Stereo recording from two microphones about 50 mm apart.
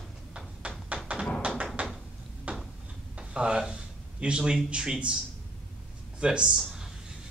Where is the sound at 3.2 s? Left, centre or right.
Centre.